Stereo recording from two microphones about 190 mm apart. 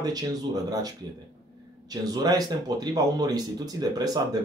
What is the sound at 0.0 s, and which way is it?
Speech, 20° right (ahead or behind).